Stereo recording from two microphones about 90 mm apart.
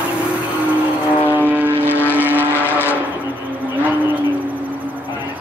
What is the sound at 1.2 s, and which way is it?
Vehicle, 25° left (ahead or behind).